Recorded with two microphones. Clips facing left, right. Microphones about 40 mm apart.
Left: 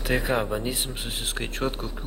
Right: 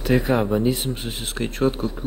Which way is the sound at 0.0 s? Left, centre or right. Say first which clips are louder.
Right 5 dB; centre.